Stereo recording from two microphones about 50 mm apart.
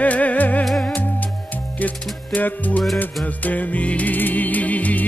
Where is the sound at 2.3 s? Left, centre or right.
Left.